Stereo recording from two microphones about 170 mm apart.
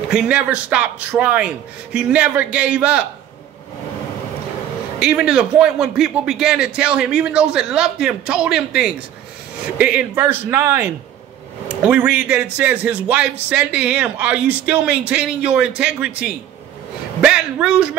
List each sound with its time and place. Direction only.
0.1 s speech: 5° right (ahead or behind)
4.9 s a man's voice: 5° right (ahead or behind)